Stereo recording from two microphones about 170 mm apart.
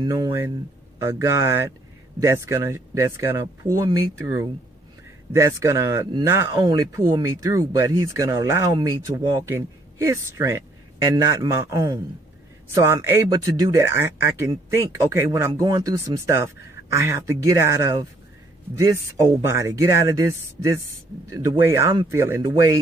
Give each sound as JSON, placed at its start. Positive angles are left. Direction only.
{"t": 0.0, "sound": "a man's voice", "side_deg": -20}
{"t": 19.4, "sound": "speech", "side_deg": -15}